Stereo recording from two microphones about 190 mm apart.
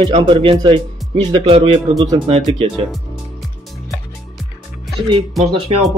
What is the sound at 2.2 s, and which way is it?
Speech, 30° right (ahead or behind).